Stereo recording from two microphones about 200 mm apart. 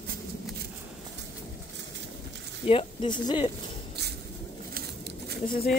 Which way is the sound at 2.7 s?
30° left (ahead or behind).